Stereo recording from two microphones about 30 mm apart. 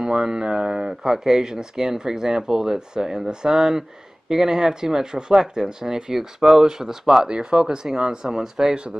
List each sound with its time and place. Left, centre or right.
0.0 s speech: centre
0.7 s speech: centre
6.1 s speech: centre
7.2 s speech: right
8.3 s speech: centre